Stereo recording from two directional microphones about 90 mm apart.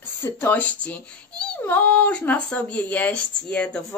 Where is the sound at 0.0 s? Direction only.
20° left (ahead or behind).